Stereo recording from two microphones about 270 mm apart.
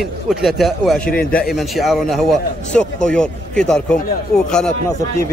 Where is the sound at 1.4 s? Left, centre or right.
Centre.